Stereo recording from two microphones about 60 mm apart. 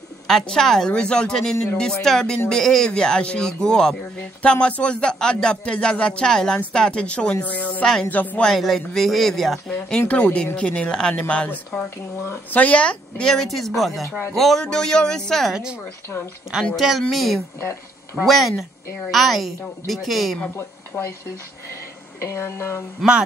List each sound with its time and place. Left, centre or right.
0.3 s a woman's voice: centre; by 7.8 s left
7.8 s speech: centre
8.1 s a woman's voice: left
8.4 s speech: centre
11.7 s a woman's voice: centre
12.4 s speech: left; by 15.5 s centre
16.7 s a woman's voice: centre
20.5 s speech: left
22.2 s speech: left